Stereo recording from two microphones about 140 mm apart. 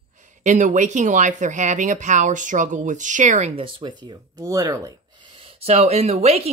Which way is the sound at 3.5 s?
35° right (ahead or behind).